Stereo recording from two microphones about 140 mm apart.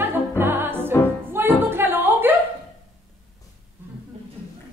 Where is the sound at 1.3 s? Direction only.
15° right (ahead or behind).